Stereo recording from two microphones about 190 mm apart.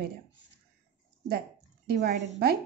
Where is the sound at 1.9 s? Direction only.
55° right (ahead or behind).